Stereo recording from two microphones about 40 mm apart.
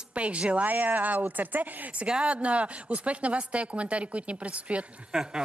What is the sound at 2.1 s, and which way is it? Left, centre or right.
A woman's voice, right.